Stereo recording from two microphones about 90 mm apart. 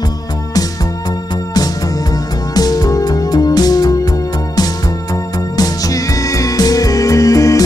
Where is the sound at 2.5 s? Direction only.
45° left (ahead or behind).